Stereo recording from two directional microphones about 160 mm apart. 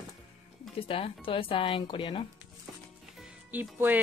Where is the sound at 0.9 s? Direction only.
35° left (ahead or behind).